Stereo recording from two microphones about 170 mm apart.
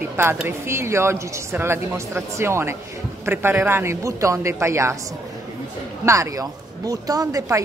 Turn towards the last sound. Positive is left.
turn(degrees=-20)  # may be behind; listen again after turning